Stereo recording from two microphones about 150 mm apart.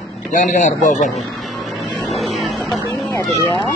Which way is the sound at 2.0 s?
Centre (ahead or behind).